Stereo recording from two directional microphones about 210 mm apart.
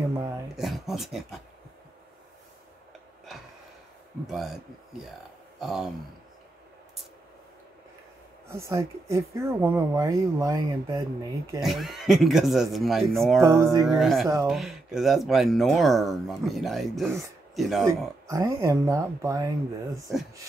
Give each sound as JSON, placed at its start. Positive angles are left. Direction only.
{"t": 0.6, "sound": "speech", "side_deg": 0}
{"t": 4.3, "sound": "speech", "side_deg": 0}
{"t": 8.5, "sound": "speech", "side_deg": -15}
{"t": 11.6, "sound": "speech", "side_deg": 0}
{"t": 13.4, "sound": "speech", "side_deg": -15}
{"t": 13.8, "sound": "speech", "side_deg": 0}
{"t": 17.8, "sound": "speech", "side_deg": -15}
{"t": 20.1, "sound": "speech", "side_deg": 0}